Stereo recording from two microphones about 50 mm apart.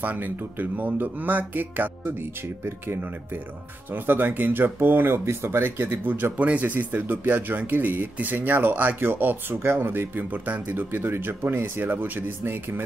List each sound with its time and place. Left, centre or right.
0.0 s speech: right
3.9 s speech: right
6.0 s speech: right
6.3 s speech: right